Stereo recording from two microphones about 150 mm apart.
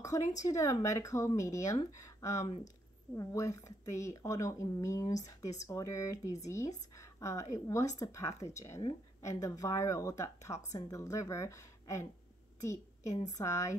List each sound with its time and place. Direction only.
0.4 s speech: 20° left (ahead or behind)
2.4 s speech: 45° left (ahead or behind)
3.2 s speech: 20° left (ahead or behind)
13.4 s speech: 20° left (ahead or behind)